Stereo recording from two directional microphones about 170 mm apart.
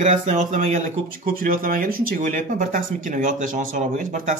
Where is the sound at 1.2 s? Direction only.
55° right (ahead or behind).